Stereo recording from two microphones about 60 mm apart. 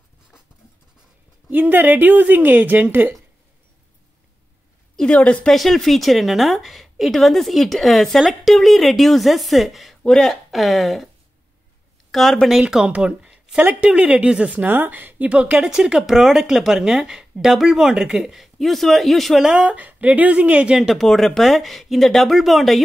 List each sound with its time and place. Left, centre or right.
1.5 s a woman's voice: right
4.9 s a woman's voice: centre
5.5 s speech: centre
12.1 s speech: centre
12.6 s speech: centre
19.4 s speech: centre
20.9 s speech: centre